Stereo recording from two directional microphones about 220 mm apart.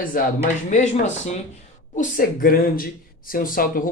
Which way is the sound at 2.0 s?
40° left (ahead or behind).